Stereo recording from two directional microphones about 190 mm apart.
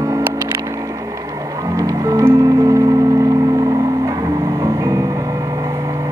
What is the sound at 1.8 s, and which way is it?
Music, 20° right (ahead or behind).